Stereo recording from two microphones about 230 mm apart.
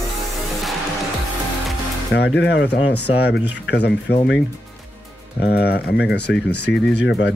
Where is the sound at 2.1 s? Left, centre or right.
Left.